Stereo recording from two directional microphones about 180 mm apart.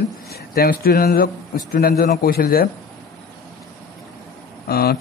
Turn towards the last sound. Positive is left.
turn(degrees=60)  # may be behind; listen again after turning